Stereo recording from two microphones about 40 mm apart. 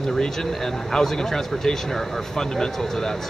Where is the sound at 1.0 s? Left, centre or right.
Centre.